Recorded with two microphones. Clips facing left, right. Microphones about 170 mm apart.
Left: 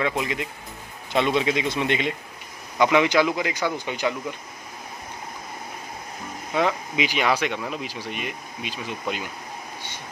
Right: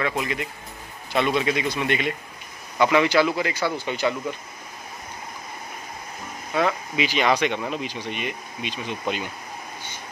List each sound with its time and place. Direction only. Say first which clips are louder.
0.0 s a man's voice: left 1 dB; 15° left (ahead or behind)
6.5 s speech: even; 15° left (ahead or behind)